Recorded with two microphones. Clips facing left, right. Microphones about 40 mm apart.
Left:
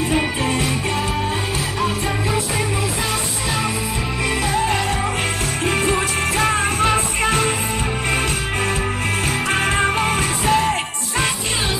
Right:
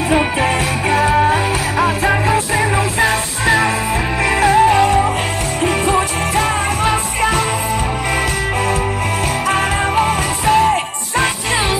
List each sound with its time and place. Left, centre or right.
0.1 s music: right
4.6 s music: centre
5.9 s music: centre
10.4 s music: centre